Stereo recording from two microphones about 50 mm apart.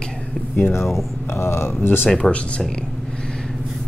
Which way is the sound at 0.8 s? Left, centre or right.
Centre.